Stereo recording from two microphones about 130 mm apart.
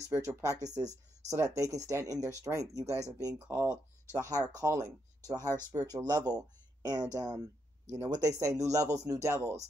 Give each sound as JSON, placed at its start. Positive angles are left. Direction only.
{"t": 0.0, "sound": "speech", "side_deg": -20}